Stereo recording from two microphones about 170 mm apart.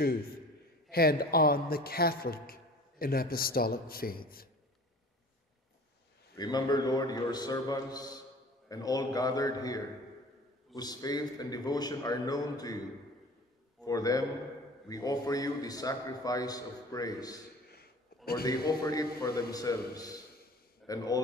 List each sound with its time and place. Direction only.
0.8 s a man's voice: 65° left (ahead or behind)
6.3 s a man's voice: 25° left (ahead or behind)
13.8 s a man's voice: 20° left (ahead or behind)
17.6 s a sound: 65° left (ahead or behind)
18.7 s a man's voice: 20° left (ahead or behind)